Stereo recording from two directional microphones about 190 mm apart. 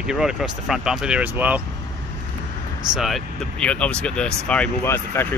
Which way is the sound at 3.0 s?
Centre (ahead or behind).